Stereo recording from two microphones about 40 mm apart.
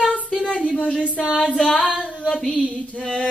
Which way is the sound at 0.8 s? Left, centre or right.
Left.